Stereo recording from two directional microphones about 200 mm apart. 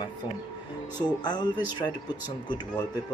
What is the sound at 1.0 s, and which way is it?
Speech, 20° left (ahead or behind).